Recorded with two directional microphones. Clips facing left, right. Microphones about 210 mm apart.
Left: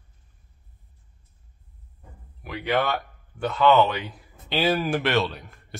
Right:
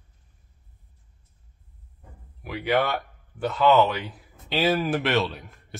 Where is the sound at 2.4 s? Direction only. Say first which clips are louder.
Right 1 dB; 10° right (ahead or behind).